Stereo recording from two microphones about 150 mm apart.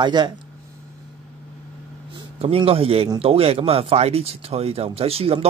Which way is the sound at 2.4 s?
40° right (ahead or behind).